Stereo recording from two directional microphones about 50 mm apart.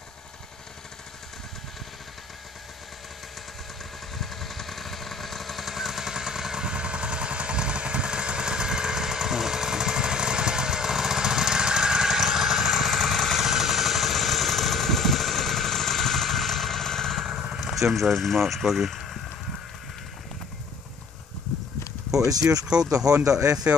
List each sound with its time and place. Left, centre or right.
4.2 s jackhammer: centre
17.6 s speech: centre
22.5 s speech: centre